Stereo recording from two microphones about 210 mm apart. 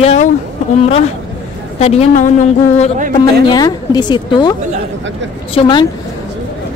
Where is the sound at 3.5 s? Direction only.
20° left (ahead or behind).